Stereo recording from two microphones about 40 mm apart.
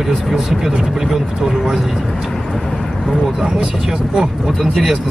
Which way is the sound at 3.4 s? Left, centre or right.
Centre.